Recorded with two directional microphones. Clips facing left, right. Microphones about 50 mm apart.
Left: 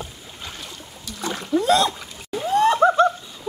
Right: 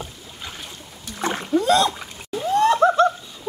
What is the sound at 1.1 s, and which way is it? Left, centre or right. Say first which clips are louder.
Splash: right 3 dB; right.